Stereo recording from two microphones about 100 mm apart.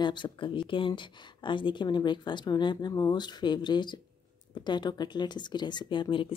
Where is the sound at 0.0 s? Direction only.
50° left (ahead or behind).